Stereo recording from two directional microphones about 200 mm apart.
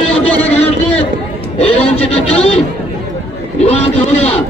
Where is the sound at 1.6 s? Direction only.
30° left (ahead or behind).